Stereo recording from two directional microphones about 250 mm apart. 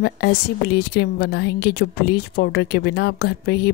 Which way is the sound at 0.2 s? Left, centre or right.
Left.